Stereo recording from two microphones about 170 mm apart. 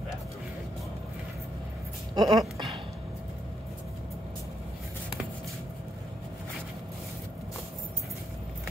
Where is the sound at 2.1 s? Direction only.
25° right (ahead or behind).